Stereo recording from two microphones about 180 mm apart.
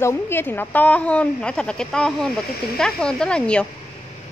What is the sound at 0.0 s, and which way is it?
Speech, 10° left (ahead or behind).